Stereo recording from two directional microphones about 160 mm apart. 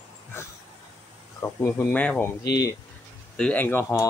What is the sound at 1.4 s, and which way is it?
Speech, 10° left (ahead or behind).